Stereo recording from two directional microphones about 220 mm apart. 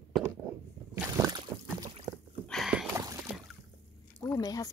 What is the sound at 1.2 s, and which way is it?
Boat, 20° right (ahead or behind).